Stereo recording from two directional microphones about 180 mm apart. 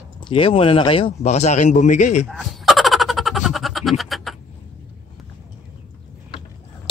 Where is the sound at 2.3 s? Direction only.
Centre (ahead or behind).